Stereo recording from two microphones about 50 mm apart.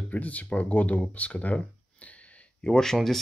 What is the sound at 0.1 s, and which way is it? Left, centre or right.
Speech, left.